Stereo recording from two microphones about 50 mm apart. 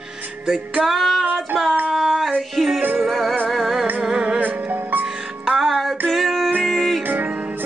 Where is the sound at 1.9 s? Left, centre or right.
Centre.